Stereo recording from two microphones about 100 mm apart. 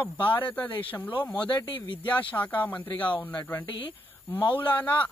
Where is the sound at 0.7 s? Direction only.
60° left (ahead or behind).